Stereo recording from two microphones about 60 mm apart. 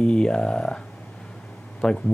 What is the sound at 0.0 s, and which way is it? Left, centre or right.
Speech, centre.